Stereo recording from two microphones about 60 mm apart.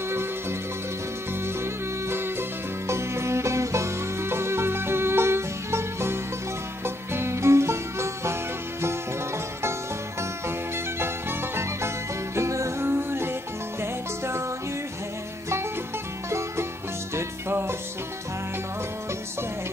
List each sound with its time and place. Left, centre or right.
1.6 s music: right
11.0 s music: right
12.4 s music: right
12.8 s music: right
16.3 s music: right